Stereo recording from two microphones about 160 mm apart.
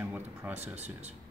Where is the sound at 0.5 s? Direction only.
45° right (ahead or behind).